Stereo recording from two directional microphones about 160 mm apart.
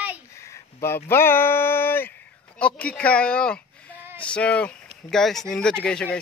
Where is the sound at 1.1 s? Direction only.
15° left (ahead or behind).